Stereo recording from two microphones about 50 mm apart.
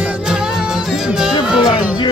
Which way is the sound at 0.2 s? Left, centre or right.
Centre.